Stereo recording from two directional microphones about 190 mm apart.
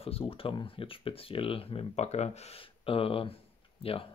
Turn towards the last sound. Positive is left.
turn(degrees=30)  # may be behind; listen again after turning